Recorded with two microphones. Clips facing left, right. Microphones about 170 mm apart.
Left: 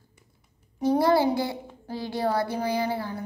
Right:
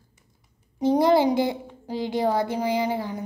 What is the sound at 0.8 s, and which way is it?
A child's voice, 20° right (ahead or behind).